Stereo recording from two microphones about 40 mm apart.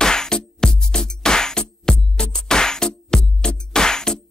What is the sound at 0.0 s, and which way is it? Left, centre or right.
Music, centre.